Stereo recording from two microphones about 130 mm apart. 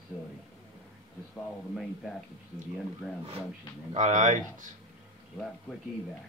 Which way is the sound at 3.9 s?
65° right (ahead or behind).